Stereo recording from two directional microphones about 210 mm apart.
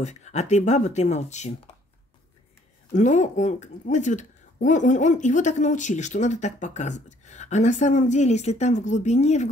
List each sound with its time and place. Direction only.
0.0 s speech: 35° left (ahead or behind)
2.9 s speech: 35° left (ahead or behind)